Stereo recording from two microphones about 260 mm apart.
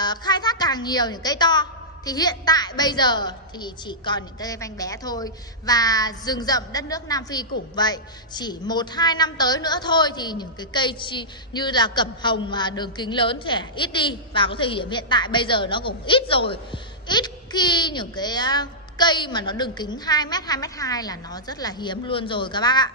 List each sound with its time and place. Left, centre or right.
0.0 s a woman's voice: centre